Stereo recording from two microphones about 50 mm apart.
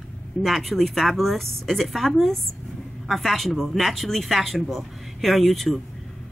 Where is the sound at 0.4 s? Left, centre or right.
Centre.